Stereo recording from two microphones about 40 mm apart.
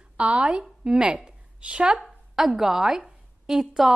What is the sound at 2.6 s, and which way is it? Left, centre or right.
A woman's voice, centre.